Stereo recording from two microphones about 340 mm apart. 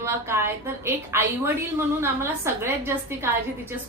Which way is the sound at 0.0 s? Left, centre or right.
Centre.